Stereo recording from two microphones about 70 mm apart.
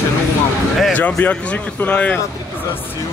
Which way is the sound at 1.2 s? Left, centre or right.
Left.